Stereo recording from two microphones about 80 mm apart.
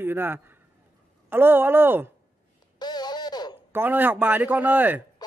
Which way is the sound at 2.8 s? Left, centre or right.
Left.